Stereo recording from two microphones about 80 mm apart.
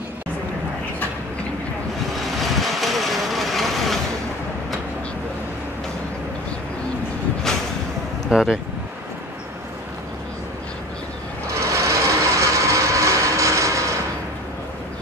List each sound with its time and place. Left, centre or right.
2.1 s vehicle: centre
7.5 s a sound: centre
8.3 s speech: centre
11.6 s train: right